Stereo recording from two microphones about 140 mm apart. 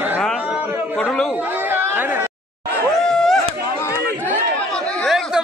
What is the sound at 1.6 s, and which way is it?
Chatter, 15° right (ahead or behind).